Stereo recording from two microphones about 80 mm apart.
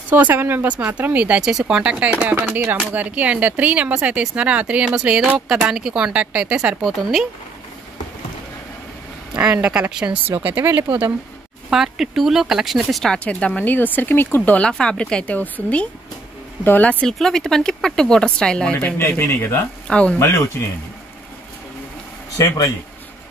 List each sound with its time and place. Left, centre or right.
0.1 s speech: right
6.8 s speech: centre
9.3 s speech: centre
10.4 s speech: right
11.7 s speech: centre
13.2 s speech: centre
17.0 s speech: centre
18.9 s speech: left
19.9 s speech: centre
20.2 s speech: left
22.4 s speech: left